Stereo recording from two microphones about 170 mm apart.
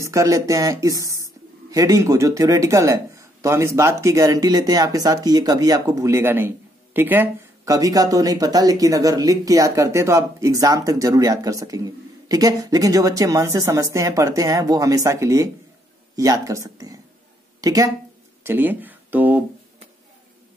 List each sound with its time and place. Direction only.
0.0 s speech: 20° right (ahead or behind)